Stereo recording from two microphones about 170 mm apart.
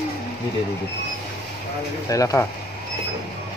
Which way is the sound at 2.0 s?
20° left (ahead or behind).